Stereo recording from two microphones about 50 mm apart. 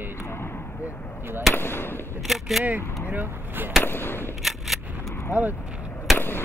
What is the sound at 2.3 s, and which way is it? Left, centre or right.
Single-lens reflex camera, centre.